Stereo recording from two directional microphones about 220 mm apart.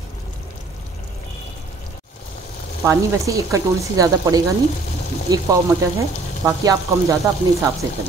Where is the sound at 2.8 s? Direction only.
15° right (ahead or behind).